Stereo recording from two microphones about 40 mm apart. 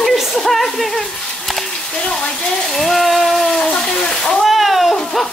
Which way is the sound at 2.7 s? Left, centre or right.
Centre.